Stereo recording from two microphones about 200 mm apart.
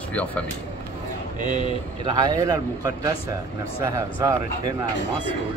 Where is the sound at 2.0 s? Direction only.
20° right (ahead or behind).